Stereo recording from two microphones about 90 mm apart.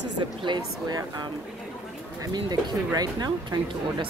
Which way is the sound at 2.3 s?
50° right (ahead or behind).